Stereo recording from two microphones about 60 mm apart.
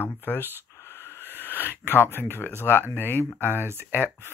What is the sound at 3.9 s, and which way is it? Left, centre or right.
Speech, left.